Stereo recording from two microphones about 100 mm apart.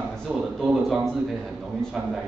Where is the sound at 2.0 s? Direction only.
10° right (ahead or behind).